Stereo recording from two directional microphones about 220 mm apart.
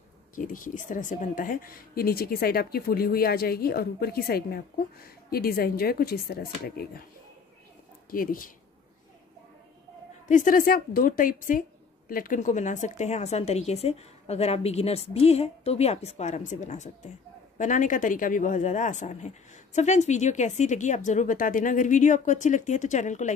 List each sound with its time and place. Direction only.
0.4 s speech: 35° left (ahead or behind)
8.1 s a woman's voice: 40° left (ahead or behind)
10.2 s a woman's voice: 35° left (ahead or behind)